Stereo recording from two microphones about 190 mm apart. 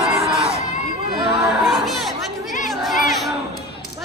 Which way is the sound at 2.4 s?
Centre (ahead or behind).